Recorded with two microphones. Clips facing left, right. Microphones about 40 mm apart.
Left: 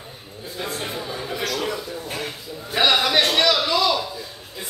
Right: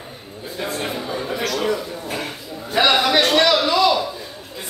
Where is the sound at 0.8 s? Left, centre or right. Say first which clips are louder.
Right 4 dB; centre.